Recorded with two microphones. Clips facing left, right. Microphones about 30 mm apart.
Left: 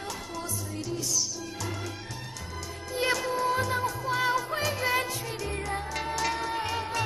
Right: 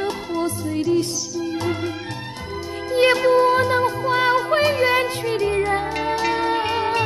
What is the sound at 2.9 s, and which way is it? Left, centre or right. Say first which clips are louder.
Music: right 12 dB; right.